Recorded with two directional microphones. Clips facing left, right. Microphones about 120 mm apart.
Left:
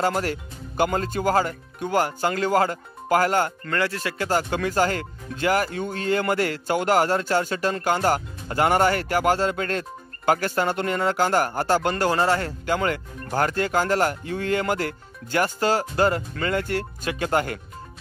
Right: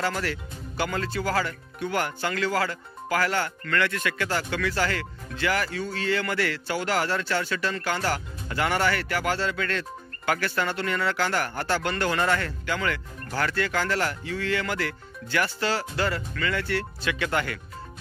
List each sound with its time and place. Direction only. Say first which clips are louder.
0.0 s speech: left 5 dB; 45° left (ahead or behind)